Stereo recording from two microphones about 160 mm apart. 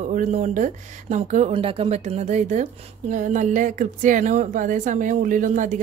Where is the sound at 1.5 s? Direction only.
35° right (ahead or behind).